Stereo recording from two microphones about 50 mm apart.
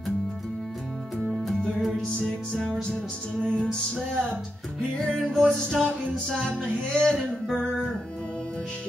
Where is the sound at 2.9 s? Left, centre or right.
Centre.